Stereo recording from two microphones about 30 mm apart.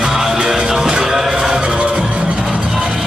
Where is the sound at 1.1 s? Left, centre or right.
Centre.